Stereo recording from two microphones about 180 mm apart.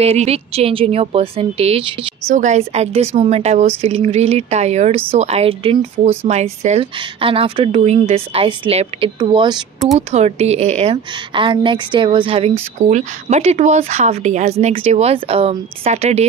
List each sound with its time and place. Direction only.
0.0 s speech: 35° right (ahead or behind)
9.9 s a woman's voice: 35° right (ahead or behind)